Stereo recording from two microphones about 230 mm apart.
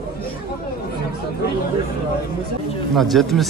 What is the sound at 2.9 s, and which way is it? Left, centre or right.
Speech, centre.